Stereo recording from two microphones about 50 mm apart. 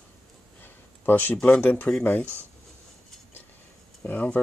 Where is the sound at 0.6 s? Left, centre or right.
Left.